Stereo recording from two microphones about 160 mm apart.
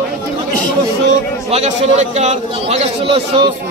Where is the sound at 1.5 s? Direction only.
45° right (ahead or behind).